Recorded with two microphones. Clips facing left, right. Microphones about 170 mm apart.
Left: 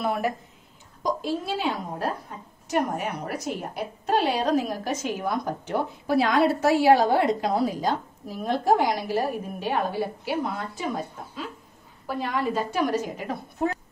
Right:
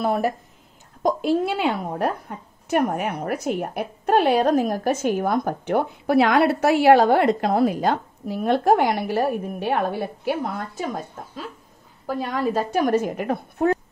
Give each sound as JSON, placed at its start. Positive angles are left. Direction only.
{"t": 0.0, "sound": "a woman's voice", "side_deg": -40}
{"t": 1.0, "sound": "a woman's voice", "side_deg": -60}
{"t": 12.2, "sound": "a woman's voice", "side_deg": -45}